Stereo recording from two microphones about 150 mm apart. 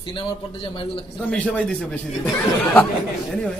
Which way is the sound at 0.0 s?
35° left (ahead or behind).